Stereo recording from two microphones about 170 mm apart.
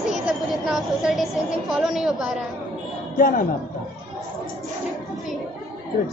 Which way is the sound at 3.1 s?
55° left (ahead or behind).